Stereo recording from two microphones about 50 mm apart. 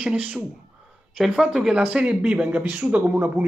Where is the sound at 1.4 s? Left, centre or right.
Centre.